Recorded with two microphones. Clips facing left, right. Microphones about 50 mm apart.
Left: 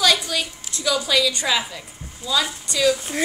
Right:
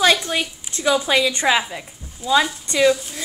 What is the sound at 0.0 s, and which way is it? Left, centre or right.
A woman's voice, right.